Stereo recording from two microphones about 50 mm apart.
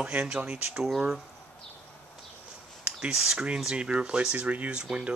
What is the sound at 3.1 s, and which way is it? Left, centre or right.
Speech, centre.